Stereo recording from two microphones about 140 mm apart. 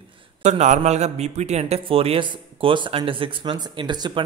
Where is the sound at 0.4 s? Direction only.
55° right (ahead or behind).